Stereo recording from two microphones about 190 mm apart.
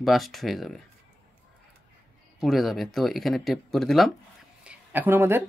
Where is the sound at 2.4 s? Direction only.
Centre (ahead or behind).